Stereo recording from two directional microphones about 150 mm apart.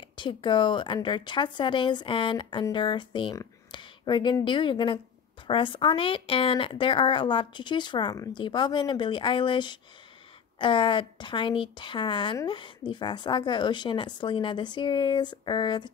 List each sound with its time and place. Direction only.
0.1 s speech: 30° left (ahead or behind)